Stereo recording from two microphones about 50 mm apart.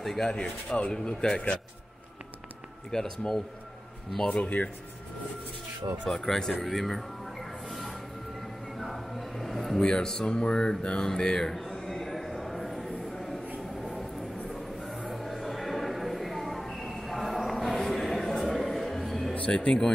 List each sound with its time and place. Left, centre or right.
0.0 s speech: centre
2.9 s speech: centre
4.3 s speech: left
6.0 s speech: centre
6.6 s music: centre
8.7 s a sound: centre
9.8 s speech: centre
11.9 s a sound: centre
14.5 s a sound: centre
15.0 s music: centre
15.4 s a sound: centre
19.3 s speech: left